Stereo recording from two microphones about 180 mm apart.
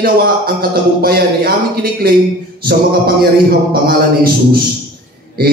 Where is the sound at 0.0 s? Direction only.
55° right (ahead or behind).